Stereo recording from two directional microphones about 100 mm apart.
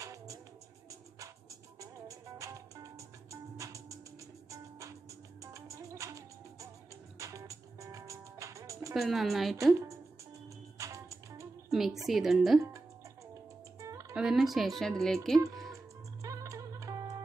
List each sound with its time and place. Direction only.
0.0 s music: 35° right (ahead or behind)
1.8 s music: 30° right (ahead or behind)
8.9 s speech: centre (ahead or behind)
10.8 s music: 30° right (ahead or behind)
11.7 s a woman's voice: 5° right (ahead or behind)
13.7 s music: 35° right (ahead or behind)
14.1 s speech: 5° right (ahead or behind)
15.7 s music: 30° right (ahead or behind)